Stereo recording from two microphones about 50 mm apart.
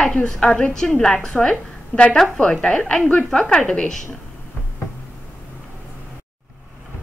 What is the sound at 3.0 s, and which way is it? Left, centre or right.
Speech, left.